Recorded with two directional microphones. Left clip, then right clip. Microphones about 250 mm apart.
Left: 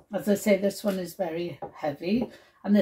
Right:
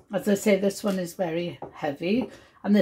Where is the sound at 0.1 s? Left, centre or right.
Right.